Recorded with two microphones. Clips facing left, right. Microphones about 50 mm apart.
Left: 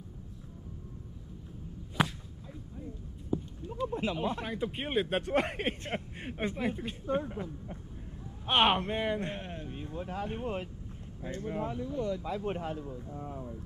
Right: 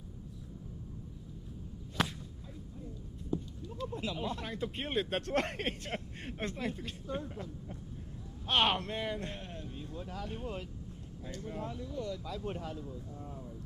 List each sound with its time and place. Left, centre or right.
2.0 s whip: centre
3.3 s clip-clop: centre
3.7 s speech: left
4.5 s speech: centre; by 13.6 s left